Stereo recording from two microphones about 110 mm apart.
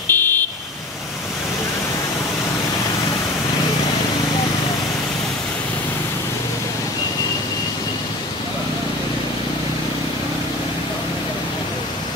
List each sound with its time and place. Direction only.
0.1 s vehicle: 20° left (ahead or behind)